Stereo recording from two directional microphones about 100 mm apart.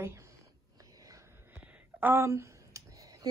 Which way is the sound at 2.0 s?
20° right (ahead or behind).